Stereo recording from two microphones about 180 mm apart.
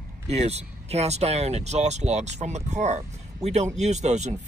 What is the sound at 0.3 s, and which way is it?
Speech, 35° right (ahead or behind).